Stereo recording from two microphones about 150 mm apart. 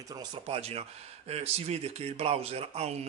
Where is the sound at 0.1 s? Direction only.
25° right (ahead or behind).